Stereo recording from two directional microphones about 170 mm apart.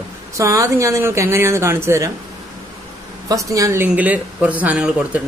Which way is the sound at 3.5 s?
15° right (ahead or behind).